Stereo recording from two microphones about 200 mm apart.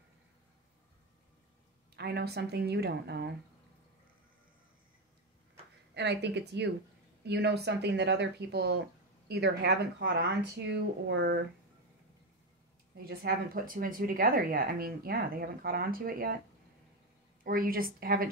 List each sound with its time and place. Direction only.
2.0 s speech: 55° right (ahead or behind)
5.9 s speech: 60° right (ahead or behind)
13.0 s speech: 45° right (ahead or behind)
17.4 s speech: 45° right (ahead or behind)